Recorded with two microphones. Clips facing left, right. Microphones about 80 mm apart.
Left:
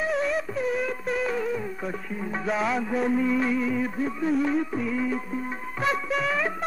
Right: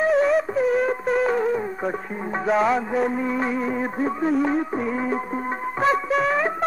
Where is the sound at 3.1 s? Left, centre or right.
Right.